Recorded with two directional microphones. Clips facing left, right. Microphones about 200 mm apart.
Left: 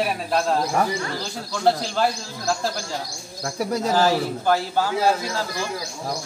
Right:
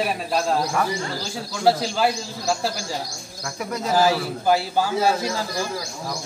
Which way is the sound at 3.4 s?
35° left (ahead or behind).